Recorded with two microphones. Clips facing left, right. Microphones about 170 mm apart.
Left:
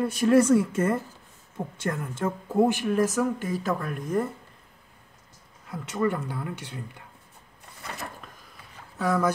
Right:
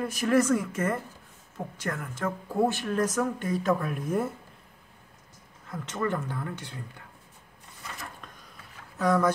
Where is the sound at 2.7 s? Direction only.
10° left (ahead or behind); by 4.2 s 5° right (ahead or behind).